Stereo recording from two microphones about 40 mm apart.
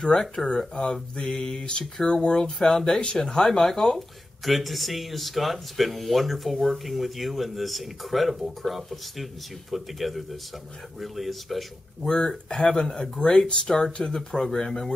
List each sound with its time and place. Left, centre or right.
0.0 s mantra: centre
3.4 s speech: centre
4.5 s speech: centre
12.1 s speech: centre